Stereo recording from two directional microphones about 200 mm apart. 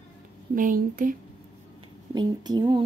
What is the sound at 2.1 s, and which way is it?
Speech, 20° right (ahead or behind).